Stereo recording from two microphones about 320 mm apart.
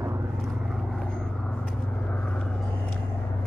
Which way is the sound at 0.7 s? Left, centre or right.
Centre.